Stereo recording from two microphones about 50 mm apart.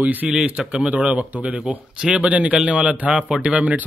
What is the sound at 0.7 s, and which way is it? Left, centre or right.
Speech, right.